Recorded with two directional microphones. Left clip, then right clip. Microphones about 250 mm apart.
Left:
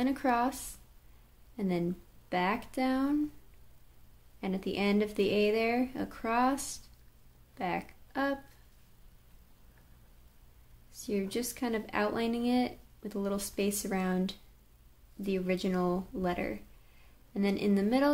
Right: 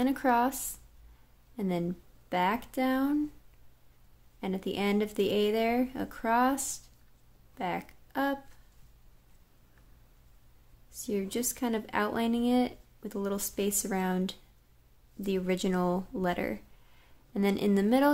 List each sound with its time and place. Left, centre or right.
0.0 s a woman's voice: centre
4.4 s a woman's voice: centre
10.9 s a woman's voice: centre